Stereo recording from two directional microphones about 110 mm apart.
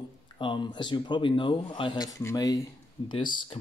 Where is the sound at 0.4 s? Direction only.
45° left (ahead or behind).